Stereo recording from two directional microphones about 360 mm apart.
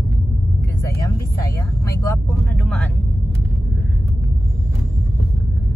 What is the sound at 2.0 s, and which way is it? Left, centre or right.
Speech, centre.